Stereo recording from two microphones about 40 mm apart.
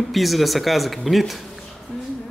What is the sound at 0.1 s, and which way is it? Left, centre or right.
Speech, centre.